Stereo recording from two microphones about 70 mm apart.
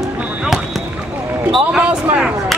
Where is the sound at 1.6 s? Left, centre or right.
Centre.